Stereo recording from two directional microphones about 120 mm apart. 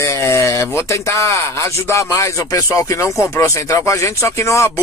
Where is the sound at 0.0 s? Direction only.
25° left (ahead or behind).